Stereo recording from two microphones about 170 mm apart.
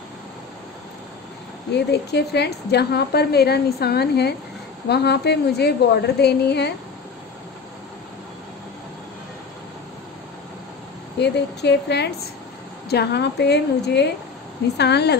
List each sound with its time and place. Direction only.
1.7 s a woman's voice: 75° left (ahead or behind)
11.1 s a woman's voice: 80° left